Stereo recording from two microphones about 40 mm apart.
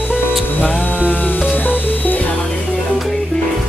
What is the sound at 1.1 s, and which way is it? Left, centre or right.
Music, left.